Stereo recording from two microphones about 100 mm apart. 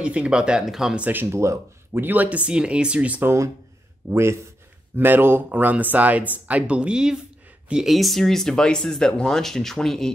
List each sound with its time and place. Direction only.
0.0 s speech: 10° right (ahead or behind)
1.0 s speech: 20° right (ahead or behind)
4.1 s speech: 25° right (ahead or behind); by 10.1 s 5° left (ahead or behind)